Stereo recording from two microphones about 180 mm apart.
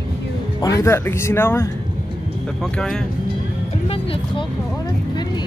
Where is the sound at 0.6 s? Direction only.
20° left (ahead or behind).